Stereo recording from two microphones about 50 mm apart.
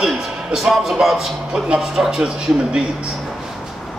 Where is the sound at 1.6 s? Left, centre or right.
Centre.